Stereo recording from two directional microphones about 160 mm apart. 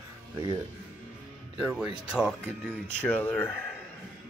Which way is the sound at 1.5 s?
5° right (ahead or behind).